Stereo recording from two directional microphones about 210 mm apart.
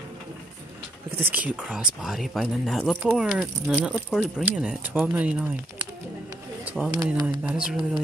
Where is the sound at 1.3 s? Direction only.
5° right (ahead or behind).